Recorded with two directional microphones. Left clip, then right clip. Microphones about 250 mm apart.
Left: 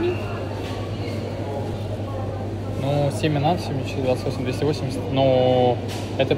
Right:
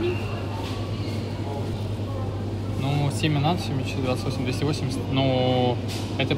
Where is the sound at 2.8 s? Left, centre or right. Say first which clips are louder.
Left 5 dB; right.